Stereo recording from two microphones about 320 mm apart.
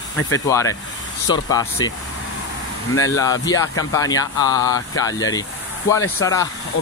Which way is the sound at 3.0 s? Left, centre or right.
Centre.